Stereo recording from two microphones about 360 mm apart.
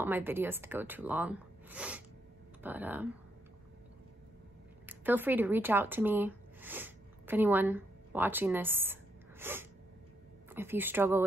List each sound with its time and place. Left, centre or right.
0.0 s speech: centre
4.8 s speech: centre
9.4 s sneeze: centre
10.5 s speech: centre